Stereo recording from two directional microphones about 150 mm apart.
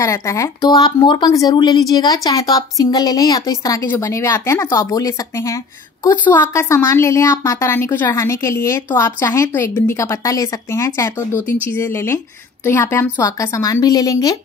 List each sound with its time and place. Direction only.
0.0 s a woman's voice: 20° left (ahead or behind)